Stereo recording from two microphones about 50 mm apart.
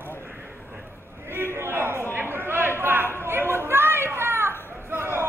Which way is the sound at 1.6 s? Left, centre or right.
Right.